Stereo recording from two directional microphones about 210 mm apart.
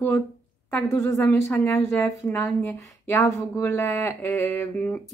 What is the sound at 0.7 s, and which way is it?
Speech, 10° left (ahead or behind).